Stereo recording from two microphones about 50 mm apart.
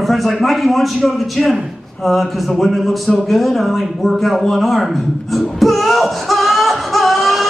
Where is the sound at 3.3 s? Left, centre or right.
Centre.